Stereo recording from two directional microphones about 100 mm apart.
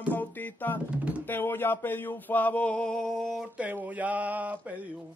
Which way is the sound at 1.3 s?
20° left (ahead or behind).